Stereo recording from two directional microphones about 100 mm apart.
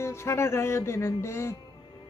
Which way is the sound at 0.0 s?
25° left (ahead or behind).